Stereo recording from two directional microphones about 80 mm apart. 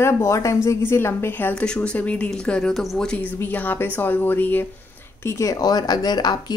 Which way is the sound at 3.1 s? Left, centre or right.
Centre.